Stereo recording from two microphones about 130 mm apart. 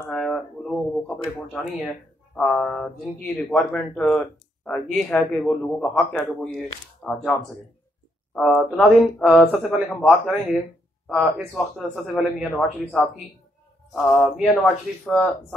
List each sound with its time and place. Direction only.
0.1 s a sound: 5° left (ahead or behind)
3.3 s speech: 5° left (ahead or behind)
8.4 s speech: centre (ahead or behind)